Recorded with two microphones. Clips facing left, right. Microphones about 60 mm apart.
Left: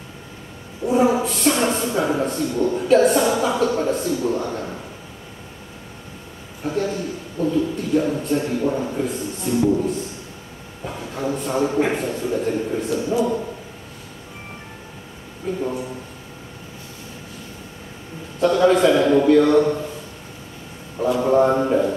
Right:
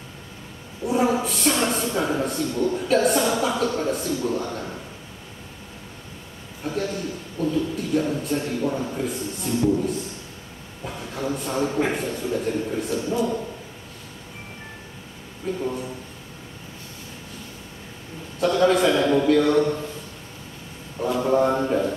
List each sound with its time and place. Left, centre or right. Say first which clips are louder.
0.8 s a man's voice: left 4 dB; centre
6.6 s a man's voice: left 4 dB; centre
10.9 s a sound: left 3 dB; centre
11.5 s speech: left 4 dB; centre
15.5 s a man's voice: left 2 dB; centre
18.4 s speech: left 3 dB; centre
21.0 s speech: left 4 dB; centre